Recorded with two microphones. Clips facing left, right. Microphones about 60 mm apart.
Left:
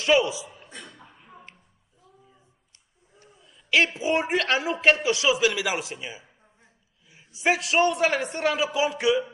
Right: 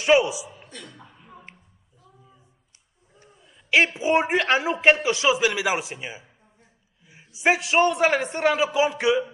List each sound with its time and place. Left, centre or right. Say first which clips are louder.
0.0 s a man's voice: right 2 dB; right
3.2 s a man's voice: right 1 dB; right